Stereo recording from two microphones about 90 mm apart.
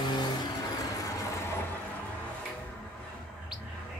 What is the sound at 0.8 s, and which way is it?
Vehicle, 40° left (ahead or behind).